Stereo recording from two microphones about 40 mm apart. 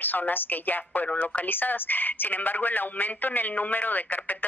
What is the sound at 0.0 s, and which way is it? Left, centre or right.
Speech, left.